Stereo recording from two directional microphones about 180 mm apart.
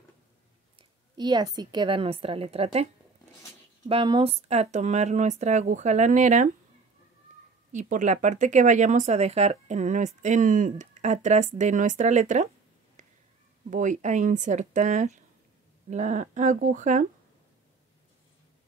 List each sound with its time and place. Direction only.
0.7 s a woman's voice: 25° right (ahead or behind)
3.9 s speech: 30° right (ahead or behind)
7.7 s speech: 45° right (ahead or behind)
13.0 s a sound: 45° right (ahead or behind)
13.7 s speech: 45° right (ahead or behind)